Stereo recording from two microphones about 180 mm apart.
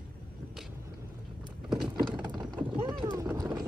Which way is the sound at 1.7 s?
5° right (ahead or behind).